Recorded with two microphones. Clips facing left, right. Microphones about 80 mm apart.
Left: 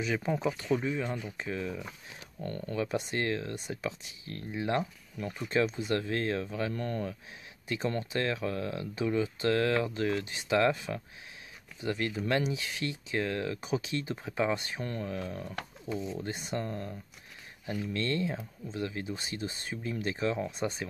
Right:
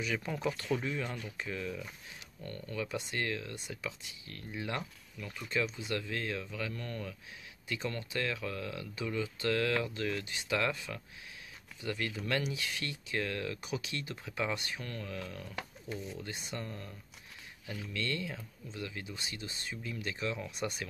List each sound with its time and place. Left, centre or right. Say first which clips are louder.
0.0 s speech: left 4 dB; left
2.4 s speech: left 6 dB; left